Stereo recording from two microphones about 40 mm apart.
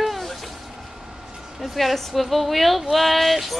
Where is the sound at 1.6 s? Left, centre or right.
Centre.